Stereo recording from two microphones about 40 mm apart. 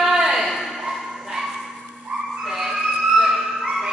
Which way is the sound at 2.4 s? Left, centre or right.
Centre.